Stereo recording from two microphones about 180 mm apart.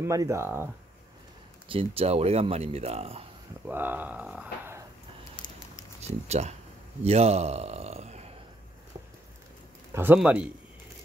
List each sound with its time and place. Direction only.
0.0 s speech: 15° right (ahead or behind)
1.7 s speech: 30° right (ahead or behind)
3.6 s speech: 10° right (ahead or behind)
5.4 s patter: 20° left (ahead or behind)
5.9 s speech: 35° right (ahead or behind)
7.0 s a sound: 35° right (ahead or behind)
9.9 s speech: 10° right (ahead or behind)